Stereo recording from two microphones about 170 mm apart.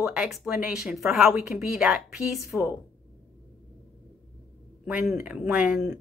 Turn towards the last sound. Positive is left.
turn(degrees=-5)  # may be behind; listen again after turning